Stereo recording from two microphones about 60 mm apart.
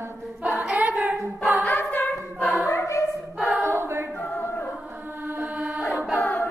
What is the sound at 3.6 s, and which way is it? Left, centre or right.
Choir, right.